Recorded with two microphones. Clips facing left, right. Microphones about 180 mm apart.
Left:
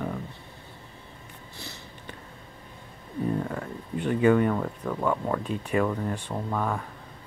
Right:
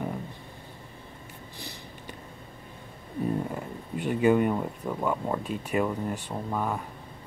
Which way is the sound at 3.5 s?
10° right (ahead or behind).